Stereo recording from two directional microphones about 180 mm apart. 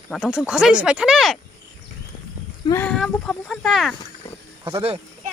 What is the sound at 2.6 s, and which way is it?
A woman's voice, 15° left (ahead or behind).